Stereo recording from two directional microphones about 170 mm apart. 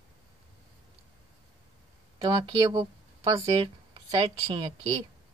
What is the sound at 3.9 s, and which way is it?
Speech, 30° right (ahead or behind).